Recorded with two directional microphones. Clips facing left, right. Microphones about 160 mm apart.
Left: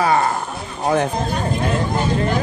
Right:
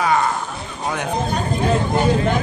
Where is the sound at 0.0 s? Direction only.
40° left (ahead or behind).